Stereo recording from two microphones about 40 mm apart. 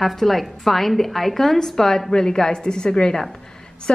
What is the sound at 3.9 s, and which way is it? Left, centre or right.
Speech, left.